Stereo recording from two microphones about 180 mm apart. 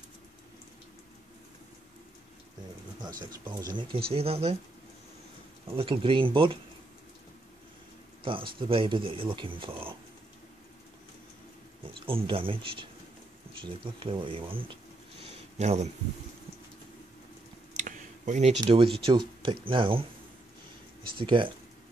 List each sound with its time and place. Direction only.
3.3 s speech: 20° right (ahead or behind)
5.7 s speech: 30° right (ahead or behind)
8.2 s speech: 30° right (ahead or behind)
11.9 s speech: 30° right (ahead or behind)
15.2 s a sound: 40° right (ahead or behind)
17.7 s a sound: 45° right (ahead or behind)
18.6 s speech: 30° right (ahead or behind)
21.2 s speech: 30° right (ahead or behind)